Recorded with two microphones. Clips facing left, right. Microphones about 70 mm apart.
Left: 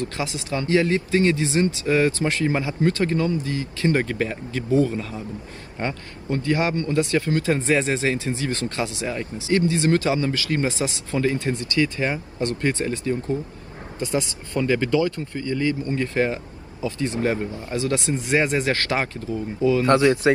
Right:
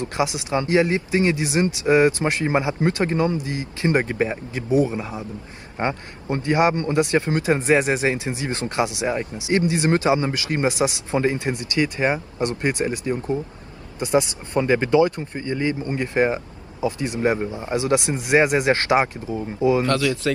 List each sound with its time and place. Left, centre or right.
0.0 s a man's voice: right
19.9 s speech: left